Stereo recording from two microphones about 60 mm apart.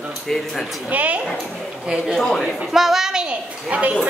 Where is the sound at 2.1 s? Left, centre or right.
Centre.